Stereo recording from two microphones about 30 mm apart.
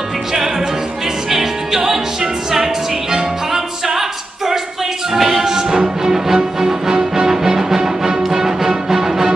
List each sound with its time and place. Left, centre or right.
1.3 s music: centre
5.1 s music: centre